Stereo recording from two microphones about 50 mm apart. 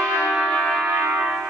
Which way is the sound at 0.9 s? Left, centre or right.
Right.